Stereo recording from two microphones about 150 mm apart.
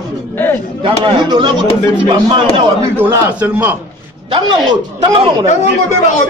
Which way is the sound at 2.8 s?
15° right (ahead or behind).